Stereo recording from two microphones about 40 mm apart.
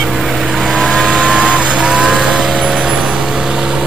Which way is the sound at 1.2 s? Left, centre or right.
Right.